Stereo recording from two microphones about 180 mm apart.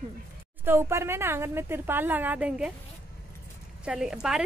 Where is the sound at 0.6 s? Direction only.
15° right (ahead or behind).